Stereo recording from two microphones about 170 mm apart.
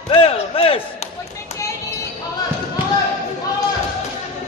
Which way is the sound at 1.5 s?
20° left (ahead or behind).